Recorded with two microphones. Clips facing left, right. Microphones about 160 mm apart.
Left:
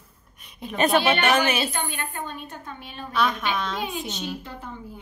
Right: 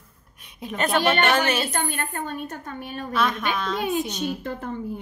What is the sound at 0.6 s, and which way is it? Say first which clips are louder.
A child's voice: left 1 dB; centre (ahead or behind).